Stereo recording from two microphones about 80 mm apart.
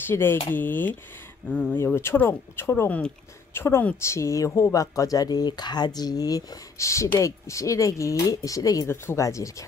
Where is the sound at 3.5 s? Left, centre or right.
Left.